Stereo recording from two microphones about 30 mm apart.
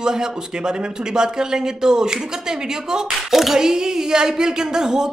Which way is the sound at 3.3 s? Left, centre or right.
Centre.